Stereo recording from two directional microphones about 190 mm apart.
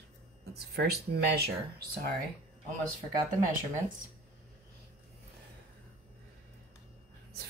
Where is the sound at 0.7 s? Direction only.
55° right (ahead or behind).